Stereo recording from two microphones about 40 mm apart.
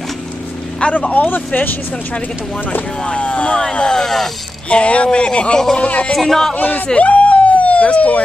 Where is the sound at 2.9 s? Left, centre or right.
Left.